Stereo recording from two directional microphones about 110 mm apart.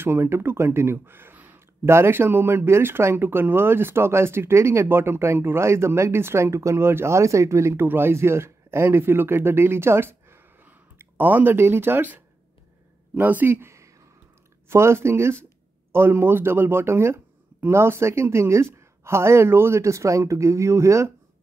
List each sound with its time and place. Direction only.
0.0 s speech: 20° right (ahead or behind)